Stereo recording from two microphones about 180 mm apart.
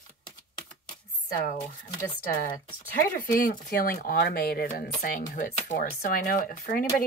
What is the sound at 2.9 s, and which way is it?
Speech, 50° left (ahead or behind).